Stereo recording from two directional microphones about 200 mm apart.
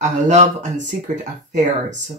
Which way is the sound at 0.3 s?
35° right (ahead or behind).